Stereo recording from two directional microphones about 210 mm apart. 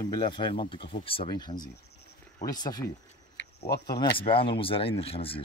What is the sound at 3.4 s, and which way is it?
Cricket, 50° left (ahead or behind).